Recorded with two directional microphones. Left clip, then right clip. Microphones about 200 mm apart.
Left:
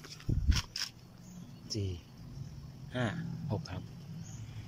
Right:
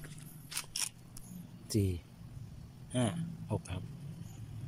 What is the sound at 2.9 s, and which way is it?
Speech, 10° right (ahead or behind).